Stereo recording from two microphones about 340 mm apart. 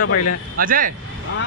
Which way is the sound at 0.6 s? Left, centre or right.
Right.